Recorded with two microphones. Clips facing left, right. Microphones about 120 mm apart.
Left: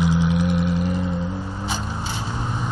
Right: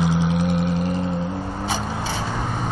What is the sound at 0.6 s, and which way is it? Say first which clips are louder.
Vehicle: even; 20° left (ahead or behind).